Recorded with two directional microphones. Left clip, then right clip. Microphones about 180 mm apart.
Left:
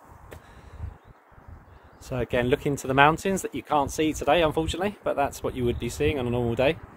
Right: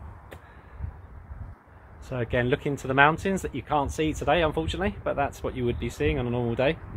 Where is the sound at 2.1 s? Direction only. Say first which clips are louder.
Left 1 dB; 10° left (ahead or behind).